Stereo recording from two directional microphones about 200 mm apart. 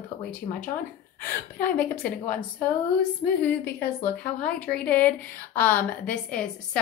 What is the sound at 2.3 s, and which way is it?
A woman's voice, 5° left (ahead or behind).